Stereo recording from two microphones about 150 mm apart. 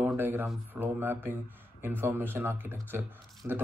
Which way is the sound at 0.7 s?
15° right (ahead or behind).